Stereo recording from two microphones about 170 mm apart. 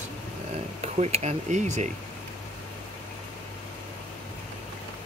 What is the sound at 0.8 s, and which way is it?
Speech, 40° right (ahead or behind).